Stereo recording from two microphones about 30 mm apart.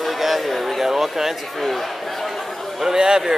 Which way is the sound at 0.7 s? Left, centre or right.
Centre.